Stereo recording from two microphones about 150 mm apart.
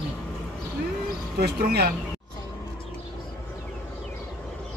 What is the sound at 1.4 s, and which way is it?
Speech, 90° right.